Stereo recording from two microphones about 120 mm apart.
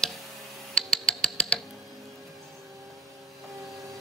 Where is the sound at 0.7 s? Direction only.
5° left (ahead or behind).